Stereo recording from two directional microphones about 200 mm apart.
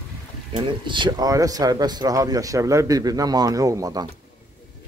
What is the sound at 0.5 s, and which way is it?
A man's voice, 25° right (ahead or behind).